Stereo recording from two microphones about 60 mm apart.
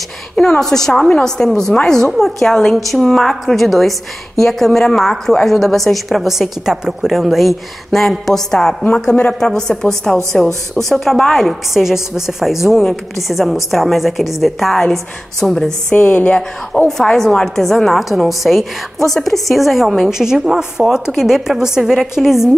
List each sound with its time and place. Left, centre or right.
0.4 s a woman's voice: centre
16.8 s a woman's voice: centre